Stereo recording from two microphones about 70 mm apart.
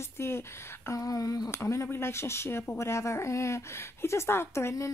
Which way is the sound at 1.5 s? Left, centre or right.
Left.